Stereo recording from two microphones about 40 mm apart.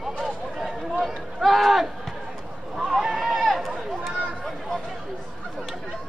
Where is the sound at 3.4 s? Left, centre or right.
Centre.